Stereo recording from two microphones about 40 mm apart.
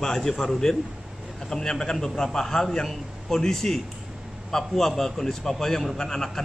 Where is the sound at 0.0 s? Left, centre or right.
Centre.